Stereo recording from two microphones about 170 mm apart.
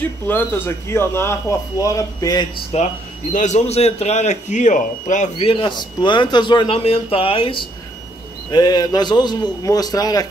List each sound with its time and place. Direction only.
0.0 s speech: 10° left (ahead or behind)
2.7 s a man's voice: 45° left (ahead or behind); by 10.2 s 20° left (ahead or behind)